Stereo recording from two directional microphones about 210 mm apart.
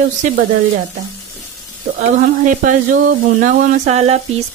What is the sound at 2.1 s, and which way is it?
Speech, 35° right (ahead or behind).